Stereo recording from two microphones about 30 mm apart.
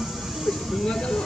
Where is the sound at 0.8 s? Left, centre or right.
Left.